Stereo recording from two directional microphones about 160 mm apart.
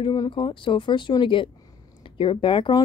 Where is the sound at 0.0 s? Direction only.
25° left (ahead or behind).